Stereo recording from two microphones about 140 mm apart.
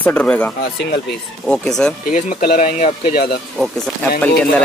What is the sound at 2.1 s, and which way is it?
Speech, 80° left.